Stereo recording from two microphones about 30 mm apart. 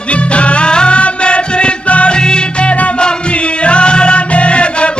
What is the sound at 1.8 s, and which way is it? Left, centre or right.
Music, left.